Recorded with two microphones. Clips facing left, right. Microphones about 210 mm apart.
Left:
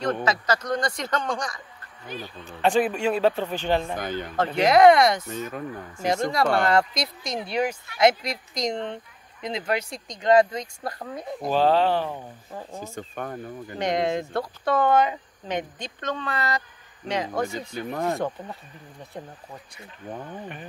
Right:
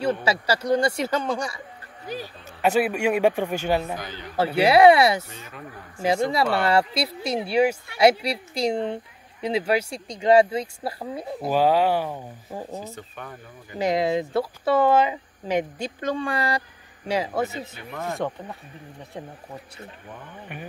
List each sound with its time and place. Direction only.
0.0 s speech: 10° right (ahead or behind)
2.0 s speech: 40° right (ahead or behind)
2.6 s speech: 10° right (ahead or behind)
3.9 s speech: 50° left (ahead or behind)
4.4 s speech: 10° right (ahead or behind)
5.3 s speech: 45° left (ahead or behind)
6.3 s speech: 5° right (ahead or behind)
12.9 s speech: 50° left (ahead or behind)
13.7 s speech: 5° right (ahead or behind)
17.6 s speech: 35° left (ahead or behind)